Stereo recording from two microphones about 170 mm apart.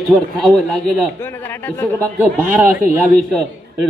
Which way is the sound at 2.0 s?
10° right (ahead or behind).